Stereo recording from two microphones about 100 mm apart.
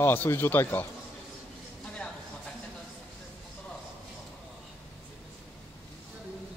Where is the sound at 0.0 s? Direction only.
25° left (ahead or behind).